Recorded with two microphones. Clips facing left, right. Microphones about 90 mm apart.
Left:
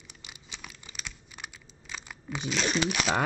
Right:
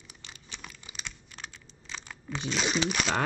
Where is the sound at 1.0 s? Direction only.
10° left (ahead or behind).